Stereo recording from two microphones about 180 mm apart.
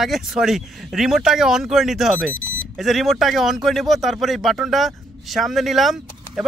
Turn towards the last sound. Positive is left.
turn(degrees=0)  # may be behind; listen again after turning